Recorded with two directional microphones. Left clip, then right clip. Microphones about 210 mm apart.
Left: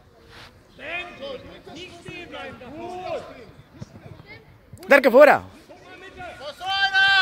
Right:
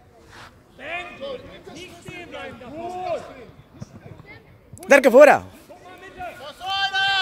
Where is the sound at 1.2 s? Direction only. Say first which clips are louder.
Right 2 dB; 20° right (ahead or behind).